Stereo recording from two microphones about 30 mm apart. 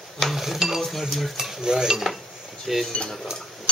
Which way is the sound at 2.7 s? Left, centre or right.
Centre.